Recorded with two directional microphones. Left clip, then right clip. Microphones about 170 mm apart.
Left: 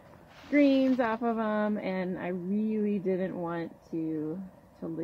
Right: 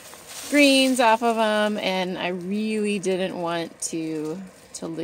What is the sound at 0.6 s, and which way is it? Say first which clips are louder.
Speech: right 7 dB; 30° right (ahead or behind).